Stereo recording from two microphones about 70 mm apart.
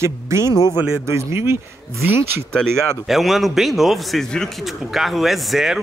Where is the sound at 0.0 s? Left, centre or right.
Right.